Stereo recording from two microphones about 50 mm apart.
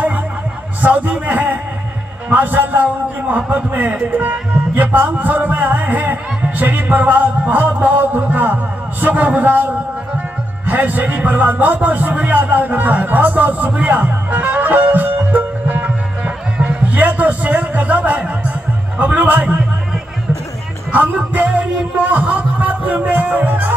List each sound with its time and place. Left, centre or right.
0.8 s a man's voice: right
10.7 s speech: right
16.5 s music: right
18.9 s a man's voice: right
20.9 s music: right